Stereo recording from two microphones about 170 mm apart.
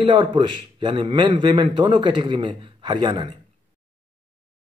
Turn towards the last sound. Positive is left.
turn(degrees=-25)  # may be behind; listen again after turning